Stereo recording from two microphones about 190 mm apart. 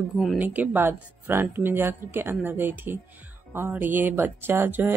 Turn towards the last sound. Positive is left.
turn(degrees=-10)  # may be behind; listen again after turning